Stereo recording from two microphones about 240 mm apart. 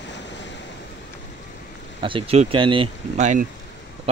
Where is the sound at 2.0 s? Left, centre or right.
Right.